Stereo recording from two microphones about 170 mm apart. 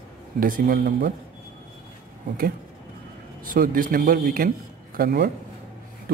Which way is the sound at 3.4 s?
55° right (ahead or behind).